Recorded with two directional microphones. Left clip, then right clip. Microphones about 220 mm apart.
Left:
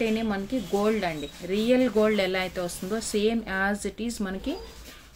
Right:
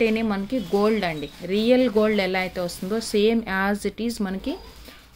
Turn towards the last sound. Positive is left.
turn(degrees=-25)  # may be behind; listen again after turning